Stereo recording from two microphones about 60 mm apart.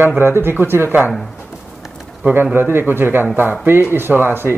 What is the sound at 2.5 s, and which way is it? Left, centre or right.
Speech, right.